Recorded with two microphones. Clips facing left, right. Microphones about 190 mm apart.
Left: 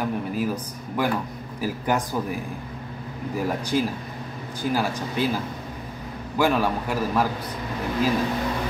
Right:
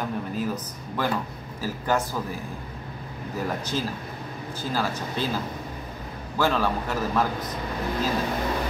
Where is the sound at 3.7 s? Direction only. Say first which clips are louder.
Left 5 dB; 10° left (ahead or behind).